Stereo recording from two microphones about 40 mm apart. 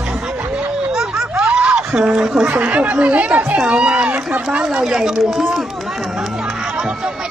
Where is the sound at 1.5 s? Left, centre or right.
Right.